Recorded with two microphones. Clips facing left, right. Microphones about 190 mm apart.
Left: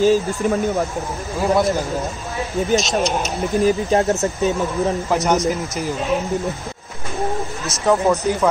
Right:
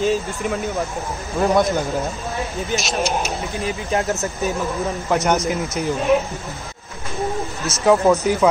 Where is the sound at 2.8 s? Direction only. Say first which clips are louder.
Left 2 dB; 5° right (ahead or behind).